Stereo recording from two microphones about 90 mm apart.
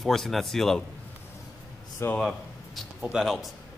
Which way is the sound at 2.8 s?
5° right (ahead or behind).